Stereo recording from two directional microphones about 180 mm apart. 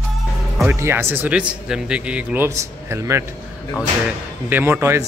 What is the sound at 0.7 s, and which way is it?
Speech, 15° right (ahead or behind).